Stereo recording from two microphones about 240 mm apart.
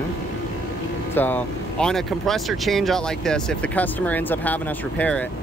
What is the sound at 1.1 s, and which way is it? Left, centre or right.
Speech, centre.